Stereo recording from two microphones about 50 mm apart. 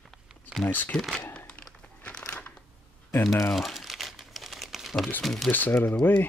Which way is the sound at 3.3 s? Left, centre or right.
Left.